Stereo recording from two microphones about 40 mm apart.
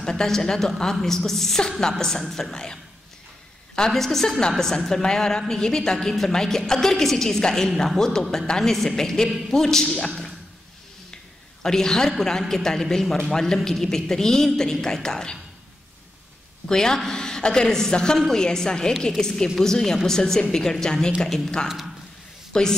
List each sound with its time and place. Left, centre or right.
0.0 s a woman's voice: centre
3.9 s a woman's voice: centre
11.6 s a woman's voice: centre
16.6 s a woman's voice: centre
21.6 s speech: centre
22.5 s speech: centre